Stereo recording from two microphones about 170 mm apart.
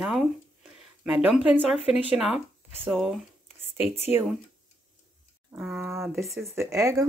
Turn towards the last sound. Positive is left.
turn(degrees=-20)  # may be behind; listen again after turning